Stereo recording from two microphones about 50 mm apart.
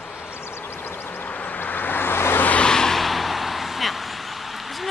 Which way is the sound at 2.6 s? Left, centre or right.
Centre.